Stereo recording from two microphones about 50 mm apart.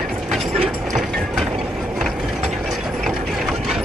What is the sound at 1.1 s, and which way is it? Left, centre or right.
Ratchet, centre.